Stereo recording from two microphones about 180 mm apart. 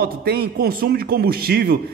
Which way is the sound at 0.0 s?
60° right (ahead or behind).